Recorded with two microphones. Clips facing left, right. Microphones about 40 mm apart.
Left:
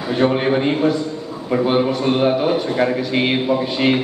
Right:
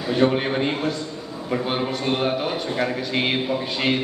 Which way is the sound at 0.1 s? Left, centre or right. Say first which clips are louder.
Left 3 dB; centre.